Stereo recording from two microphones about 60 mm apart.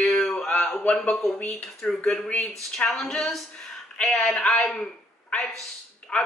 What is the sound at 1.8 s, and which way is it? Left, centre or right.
Speech, centre.